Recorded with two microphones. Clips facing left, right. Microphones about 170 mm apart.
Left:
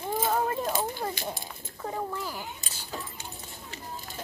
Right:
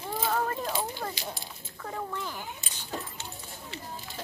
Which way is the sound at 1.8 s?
20° left (ahead or behind).